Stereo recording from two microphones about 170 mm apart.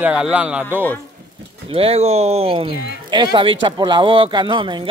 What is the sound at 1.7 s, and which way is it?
Speech, 35° right (ahead or behind).